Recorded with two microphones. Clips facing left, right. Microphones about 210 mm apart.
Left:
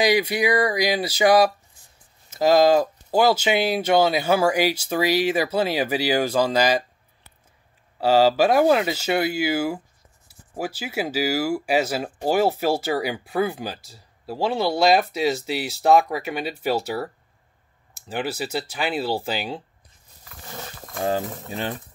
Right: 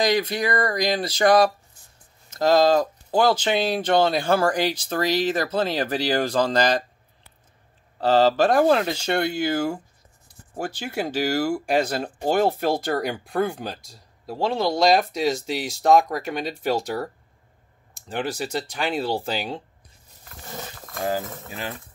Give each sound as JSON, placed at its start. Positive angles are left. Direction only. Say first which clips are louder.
{"t": 0.0, "sound": "speech", "louder": "left 2 dB", "side_deg": 10}
{"t": 8.0, "sound": "speech", "louder": "left 1 dB", "side_deg": 10}
{"t": 21.0, "sound": "speech", "louder": "left 2 dB", "side_deg": 25}